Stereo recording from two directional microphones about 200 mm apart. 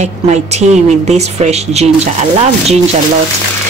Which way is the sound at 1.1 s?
35° right (ahead or behind).